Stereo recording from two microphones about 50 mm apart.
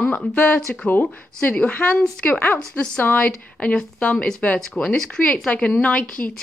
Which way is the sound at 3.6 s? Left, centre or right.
Left.